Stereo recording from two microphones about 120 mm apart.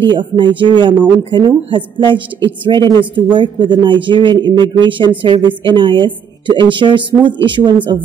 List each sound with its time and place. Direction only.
0.0 s a woman's voice: 40° right (ahead or behind)